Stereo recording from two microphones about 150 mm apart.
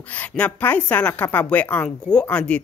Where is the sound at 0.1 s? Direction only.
10° left (ahead or behind).